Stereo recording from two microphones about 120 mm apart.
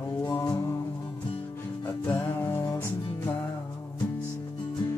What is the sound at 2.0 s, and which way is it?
Music, 20° left (ahead or behind).